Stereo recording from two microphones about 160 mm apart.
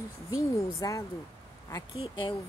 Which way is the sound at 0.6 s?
20° left (ahead or behind).